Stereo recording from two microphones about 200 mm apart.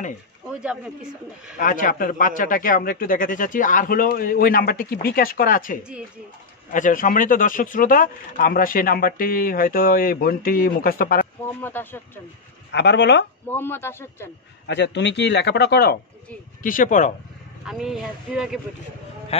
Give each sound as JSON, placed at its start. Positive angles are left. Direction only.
{"t": 0.5, "sound": "a man's voice", "side_deg": -5}
{"t": 1.6, "sound": "speech", "side_deg": 40}
{"t": 11.6, "sound": "a man's voice", "side_deg": 10}
{"t": 12.7, "sound": "speech", "side_deg": 60}
{"t": 13.5, "sound": "a man's voice", "side_deg": 10}
{"t": 14.7, "sound": "speech", "side_deg": 60}
{"t": 16.6, "sound": "speech", "side_deg": 40}
{"t": 17.6, "sound": "speech", "side_deg": 0}